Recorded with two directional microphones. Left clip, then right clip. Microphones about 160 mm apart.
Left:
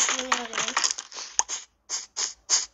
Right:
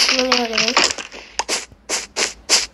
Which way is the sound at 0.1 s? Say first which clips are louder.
Right 10 dB; 5° left (ahead or behind).